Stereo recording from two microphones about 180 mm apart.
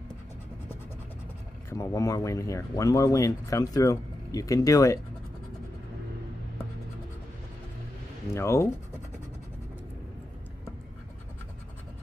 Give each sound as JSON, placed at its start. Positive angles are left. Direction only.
{"t": 1.7, "sound": "speech", "side_deg": 15}
{"t": 8.3, "sound": "speech", "side_deg": 15}